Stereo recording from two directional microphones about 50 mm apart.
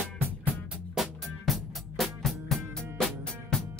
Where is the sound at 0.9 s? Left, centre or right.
Centre.